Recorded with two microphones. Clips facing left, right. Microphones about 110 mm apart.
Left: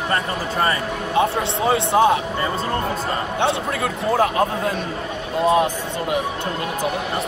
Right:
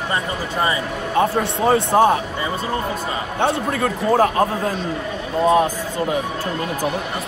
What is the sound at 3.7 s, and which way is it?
Speech, 40° right (ahead or behind).